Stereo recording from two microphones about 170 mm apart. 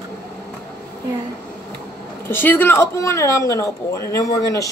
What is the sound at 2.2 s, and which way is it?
Speech, 10° left (ahead or behind).